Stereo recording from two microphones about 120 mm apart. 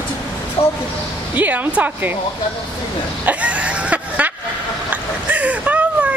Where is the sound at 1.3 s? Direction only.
15° right (ahead or behind).